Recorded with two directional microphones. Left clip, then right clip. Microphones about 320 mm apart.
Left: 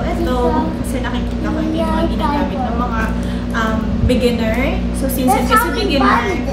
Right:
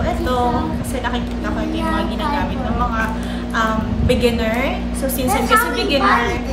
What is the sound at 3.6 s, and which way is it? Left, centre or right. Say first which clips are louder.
A woman's voice: right 1 dB; centre.